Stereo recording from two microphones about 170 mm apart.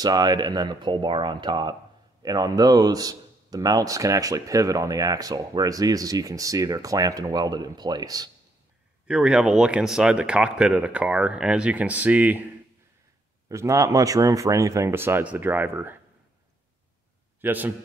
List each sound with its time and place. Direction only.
0.0 s speech: 25° right (ahead or behind)
9.0 s speech: 5° right (ahead or behind)
13.5 s speech: 15° right (ahead or behind)
17.4 s a man's voice: 10° right (ahead or behind)